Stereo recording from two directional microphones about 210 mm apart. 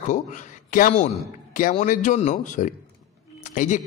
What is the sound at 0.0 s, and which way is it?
A man's voice, 35° left (ahead or behind).